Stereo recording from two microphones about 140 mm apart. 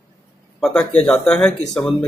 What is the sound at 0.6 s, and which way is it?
Speech, 5° left (ahead or behind).